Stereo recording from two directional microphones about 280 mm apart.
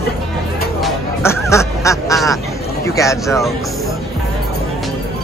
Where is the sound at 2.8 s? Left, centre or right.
Centre.